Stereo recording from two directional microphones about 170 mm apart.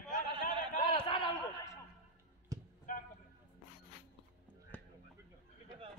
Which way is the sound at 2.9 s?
55° left (ahead or behind).